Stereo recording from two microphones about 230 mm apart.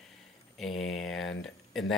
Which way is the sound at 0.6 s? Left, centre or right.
Centre.